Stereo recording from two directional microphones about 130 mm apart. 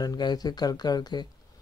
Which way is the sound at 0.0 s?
30° left (ahead or behind).